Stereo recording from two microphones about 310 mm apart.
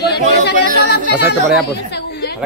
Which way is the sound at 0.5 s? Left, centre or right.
Left.